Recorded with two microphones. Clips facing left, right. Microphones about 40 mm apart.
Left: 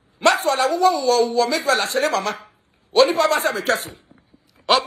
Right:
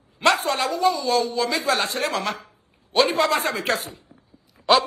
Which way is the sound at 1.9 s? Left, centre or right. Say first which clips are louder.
Left 5 dB; left.